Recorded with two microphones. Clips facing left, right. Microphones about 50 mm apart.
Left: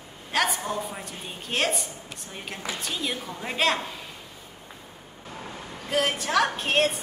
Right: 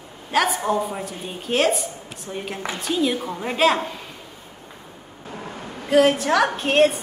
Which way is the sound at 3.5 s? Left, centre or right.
Centre.